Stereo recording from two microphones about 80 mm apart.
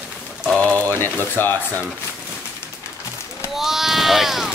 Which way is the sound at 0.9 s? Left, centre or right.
Left.